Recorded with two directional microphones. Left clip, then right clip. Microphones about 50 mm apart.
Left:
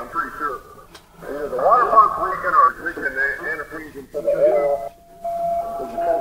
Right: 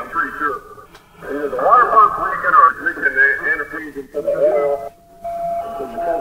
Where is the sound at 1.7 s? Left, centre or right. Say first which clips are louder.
Right 3 dB; centre.